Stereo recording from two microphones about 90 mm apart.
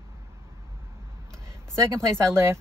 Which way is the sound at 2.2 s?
30° right (ahead or behind).